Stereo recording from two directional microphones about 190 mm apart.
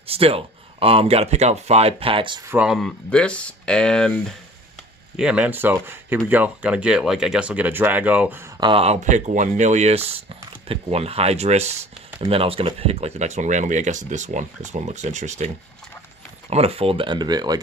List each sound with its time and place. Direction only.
0.0 s speech: 30° right (ahead or behind)
2.5 s speech: 5° right (ahead or behind)
5.1 s speech: 5° right (ahead or behind)
8.5 s speech: 25° right (ahead or behind)